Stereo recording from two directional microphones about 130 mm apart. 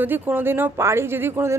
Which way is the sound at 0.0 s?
15° right (ahead or behind).